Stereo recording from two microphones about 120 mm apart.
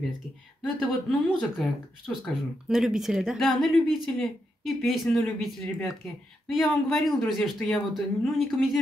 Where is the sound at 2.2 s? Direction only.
5° right (ahead or behind).